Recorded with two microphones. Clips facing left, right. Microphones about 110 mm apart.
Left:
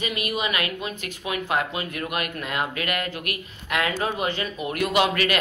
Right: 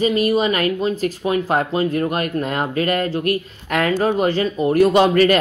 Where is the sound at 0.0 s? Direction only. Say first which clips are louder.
Right 11 dB; 35° right (ahead or behind).